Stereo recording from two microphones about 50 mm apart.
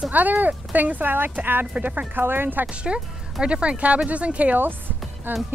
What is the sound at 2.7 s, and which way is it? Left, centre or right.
Speech, right.